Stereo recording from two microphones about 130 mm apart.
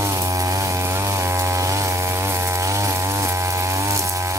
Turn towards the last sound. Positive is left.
turn(degrees=-25)  # may be behind; listen again after turning